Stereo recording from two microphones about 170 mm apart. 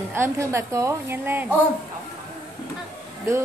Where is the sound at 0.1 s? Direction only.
15° right (ahead or behind).